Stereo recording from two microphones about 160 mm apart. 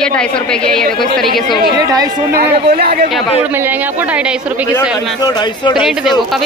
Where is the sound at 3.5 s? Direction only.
10° right (ahead or behind).